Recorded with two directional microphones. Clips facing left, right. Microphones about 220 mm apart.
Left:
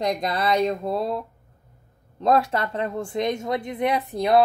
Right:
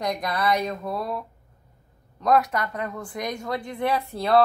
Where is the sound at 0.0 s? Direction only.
25° left (ahead or behind).